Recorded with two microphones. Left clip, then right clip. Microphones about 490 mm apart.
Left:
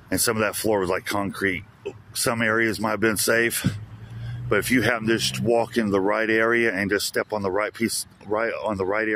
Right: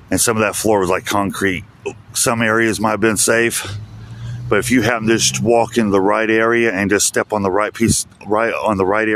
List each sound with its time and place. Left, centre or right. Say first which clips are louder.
0.1 s speech: right 7 dB; left